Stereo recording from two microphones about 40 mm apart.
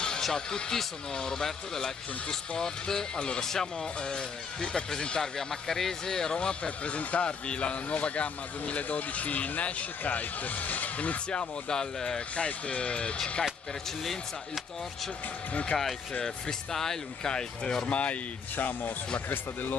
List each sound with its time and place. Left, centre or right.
0.2 s speech: centre
5.2 s speech: centre; by 11.1 s left
11.2 s speech: left
15.5 s speech: left
16.2 s speech: centre
17.8 s speech: left
18.6 s speech: left